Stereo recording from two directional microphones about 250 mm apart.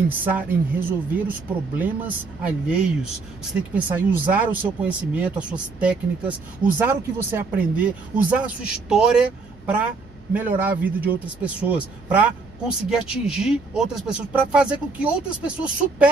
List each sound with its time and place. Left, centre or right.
0.2 s speech: centre
2.4 s a man's voice: centre